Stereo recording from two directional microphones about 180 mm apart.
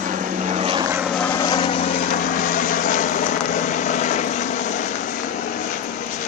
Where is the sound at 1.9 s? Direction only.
45° left (ahead or behind).